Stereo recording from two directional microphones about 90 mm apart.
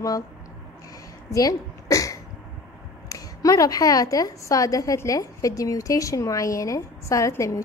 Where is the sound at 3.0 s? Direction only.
40° left (ahead or behind).